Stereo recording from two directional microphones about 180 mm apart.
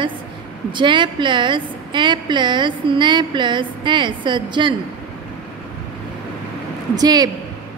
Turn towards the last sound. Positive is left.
turn(degrees=-20)  # may be behind; listen again after turning